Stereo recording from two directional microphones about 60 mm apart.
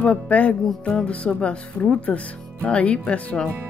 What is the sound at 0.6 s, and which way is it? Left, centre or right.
Music, centre.